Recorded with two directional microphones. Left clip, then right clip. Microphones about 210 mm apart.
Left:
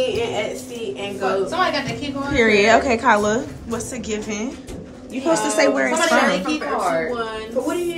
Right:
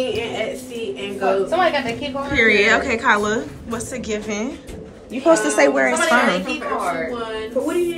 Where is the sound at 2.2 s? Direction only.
15° left (ahead or behind).